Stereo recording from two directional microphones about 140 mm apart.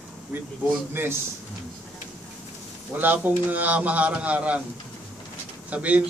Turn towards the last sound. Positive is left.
turn(degrees=-10)  # may be behind; listen again after turning